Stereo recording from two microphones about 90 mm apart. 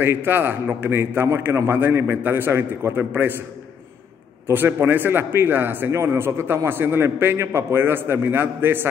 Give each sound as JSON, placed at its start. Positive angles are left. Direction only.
{"t": 0.0, "sound": "a man's voice", "side_deg": -25}
{"t": 4.5, "sound": "a man's voice", "side_deg": -25}